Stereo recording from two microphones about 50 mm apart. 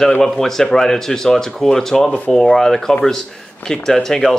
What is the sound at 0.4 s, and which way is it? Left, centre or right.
Speech, centre.